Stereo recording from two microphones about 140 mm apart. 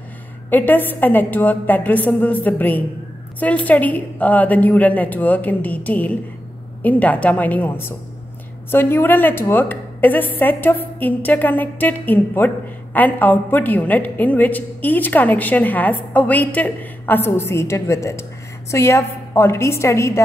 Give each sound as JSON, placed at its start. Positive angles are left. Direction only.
{"t": 0.5, "sound": "a woman's voice", "side_deg": 15}